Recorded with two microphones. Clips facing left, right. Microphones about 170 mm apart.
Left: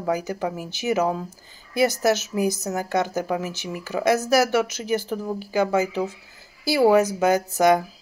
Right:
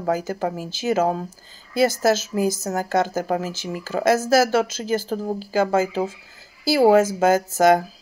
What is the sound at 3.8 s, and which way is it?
A woman's voice, 15° left (ahead or behind).